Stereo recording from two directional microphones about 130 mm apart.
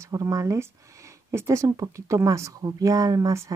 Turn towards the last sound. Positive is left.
turn(degrees=-25)  # may be behind; listen again after turning